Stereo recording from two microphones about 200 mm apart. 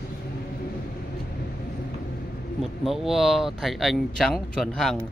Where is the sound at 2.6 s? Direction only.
Centre (ahead or behind).